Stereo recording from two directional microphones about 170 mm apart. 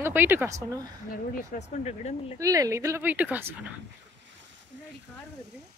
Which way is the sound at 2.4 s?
20° right (ahead or behind).